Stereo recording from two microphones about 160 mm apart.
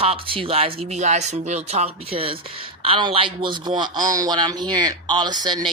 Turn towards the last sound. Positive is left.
turn(degrees=-25)  # may be behind; listen again after turning